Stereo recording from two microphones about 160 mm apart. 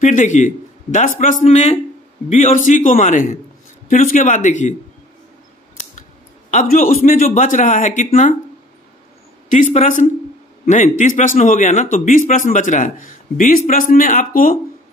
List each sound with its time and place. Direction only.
0.0 s a man's voice: 50° left (ahead or behind)
1.4 s a man's voice: 45° left (ahead or behind)
6.5 s a man's voice: 55° left (ahead or behind)
9.5 s a man's voice: 50° left (ahead or behind)